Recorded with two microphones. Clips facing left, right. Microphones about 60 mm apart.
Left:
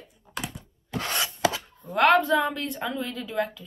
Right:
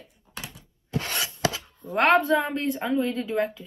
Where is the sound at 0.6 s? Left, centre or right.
Left.